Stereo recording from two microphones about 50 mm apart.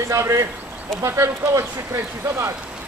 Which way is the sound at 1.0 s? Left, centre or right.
Right.